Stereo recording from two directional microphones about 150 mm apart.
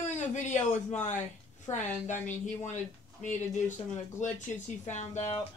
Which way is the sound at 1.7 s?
20° left (ahead or behind).